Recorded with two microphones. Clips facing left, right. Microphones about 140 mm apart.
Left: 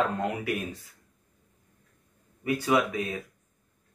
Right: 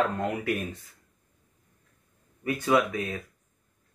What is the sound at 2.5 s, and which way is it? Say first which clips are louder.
Speech: even; 15° left (ahead or behind).